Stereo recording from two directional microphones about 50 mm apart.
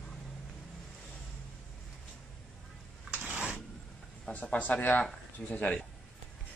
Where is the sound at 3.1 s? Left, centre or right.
Right.